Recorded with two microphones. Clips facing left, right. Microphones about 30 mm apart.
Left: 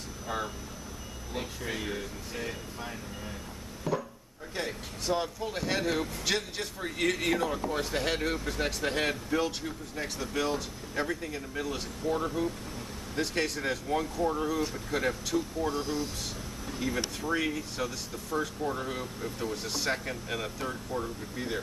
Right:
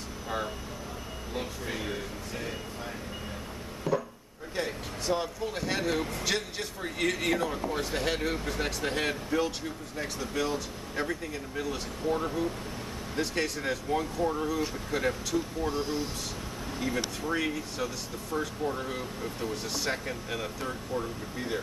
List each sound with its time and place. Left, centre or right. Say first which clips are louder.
1.3 s speech: even; centre
3.9 s chopping: right 2 dB; centre
4.6 s speech: right 2 dB; centre
12.0 s speech: right 1 dB; right
13.1 s speech: even; centre
15.8 s speech: right 1 dB; centre
17.3 s speech: left 1 dB; centre